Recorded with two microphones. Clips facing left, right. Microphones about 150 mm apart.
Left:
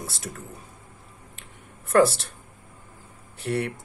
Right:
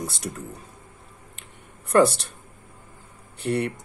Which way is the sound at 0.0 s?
Centre (ahead or behind).